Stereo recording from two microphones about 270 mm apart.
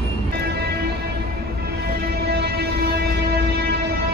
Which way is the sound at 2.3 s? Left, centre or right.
Right.